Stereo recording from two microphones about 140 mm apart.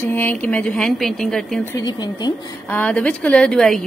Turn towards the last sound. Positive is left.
turn(degrees=5)  # may be behind; listen again after turning